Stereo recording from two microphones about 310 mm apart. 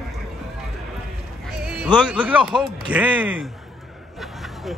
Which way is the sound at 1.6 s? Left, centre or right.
Centre.